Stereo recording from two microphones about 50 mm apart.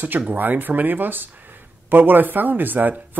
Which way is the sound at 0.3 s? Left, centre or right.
Right.